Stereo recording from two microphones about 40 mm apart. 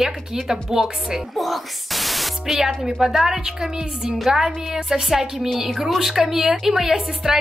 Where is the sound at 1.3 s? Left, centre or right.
Centre.